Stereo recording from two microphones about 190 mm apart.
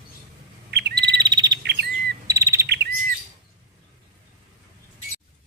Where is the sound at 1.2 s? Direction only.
20° right (ahead or behind).